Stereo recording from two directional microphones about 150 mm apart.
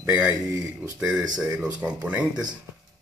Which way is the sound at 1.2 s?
25° right (ahead or behind).